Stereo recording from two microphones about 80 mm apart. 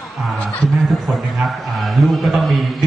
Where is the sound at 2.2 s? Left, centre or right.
Centre.